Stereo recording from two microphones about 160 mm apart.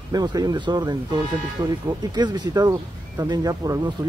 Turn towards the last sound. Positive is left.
turn(degrees=-20)  # may be behind; listen again after turning